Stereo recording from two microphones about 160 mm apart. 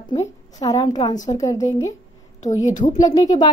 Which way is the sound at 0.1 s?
20° left (ahead or behind).